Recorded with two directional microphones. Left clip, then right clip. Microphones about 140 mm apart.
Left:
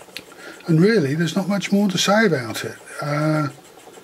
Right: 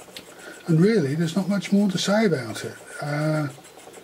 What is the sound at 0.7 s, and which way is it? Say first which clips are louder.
Speech: left 4 dB; 25° left (ahead or behind).